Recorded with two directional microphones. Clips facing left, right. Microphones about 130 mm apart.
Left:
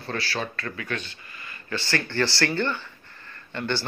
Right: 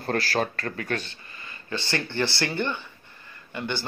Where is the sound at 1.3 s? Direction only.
25° right (ahead or behind).